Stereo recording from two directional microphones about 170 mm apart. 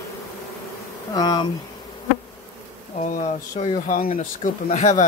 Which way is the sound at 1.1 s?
25° left (ahead or behind).